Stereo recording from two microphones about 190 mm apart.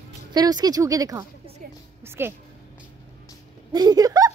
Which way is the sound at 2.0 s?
10° right (ahead or behind).